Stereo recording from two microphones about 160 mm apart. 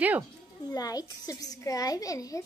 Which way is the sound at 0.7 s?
25° left (ahead or behind).